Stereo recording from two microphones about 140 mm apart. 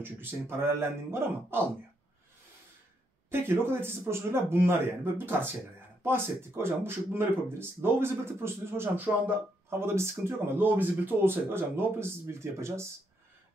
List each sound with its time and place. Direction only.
0.0 s speech: 15° right (ahead or behind)
3.3 s speech: 15° right (ahead or behind)